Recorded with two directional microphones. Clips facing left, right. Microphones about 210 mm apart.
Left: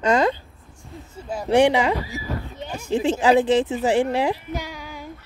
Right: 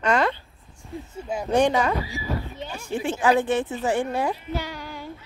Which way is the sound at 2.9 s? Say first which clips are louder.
Left 6 dB; 90° left.